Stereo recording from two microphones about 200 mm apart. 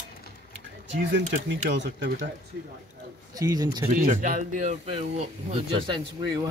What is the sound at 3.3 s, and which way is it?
Speech, 15° right (ahead or behind).